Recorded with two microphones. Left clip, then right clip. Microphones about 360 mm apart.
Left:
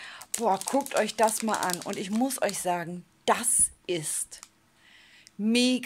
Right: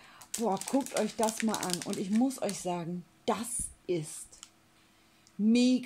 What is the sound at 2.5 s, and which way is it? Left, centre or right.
A woman's voice, left.